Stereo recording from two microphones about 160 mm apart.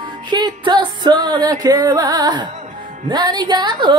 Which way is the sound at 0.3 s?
30° right (ahead or behind).